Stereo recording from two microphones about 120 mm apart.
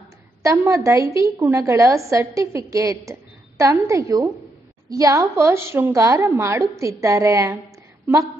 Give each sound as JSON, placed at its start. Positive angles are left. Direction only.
{"t": 0.4, "sound": "a woman's voice", "side_deg": -25}